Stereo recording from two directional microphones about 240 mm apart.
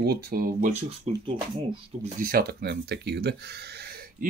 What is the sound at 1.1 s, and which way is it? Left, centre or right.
Speech, right.